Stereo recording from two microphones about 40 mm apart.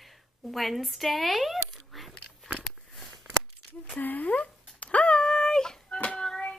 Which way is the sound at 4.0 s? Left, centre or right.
Left.